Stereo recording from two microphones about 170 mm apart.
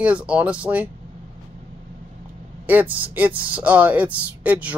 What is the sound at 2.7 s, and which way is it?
Speech, 10° right (ahead or behind).